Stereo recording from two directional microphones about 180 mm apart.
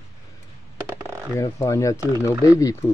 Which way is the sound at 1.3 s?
15° left (ahead or behind).